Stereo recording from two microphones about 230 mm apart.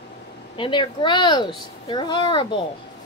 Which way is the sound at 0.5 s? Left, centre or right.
Left.